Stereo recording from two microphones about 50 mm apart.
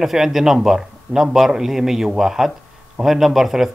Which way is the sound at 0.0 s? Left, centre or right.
Centre.